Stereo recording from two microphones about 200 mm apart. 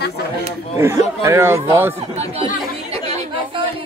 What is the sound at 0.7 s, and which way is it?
Speech, 10° right (ahead or behind).